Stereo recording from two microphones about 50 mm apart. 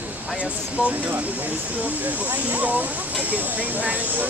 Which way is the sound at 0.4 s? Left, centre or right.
Right.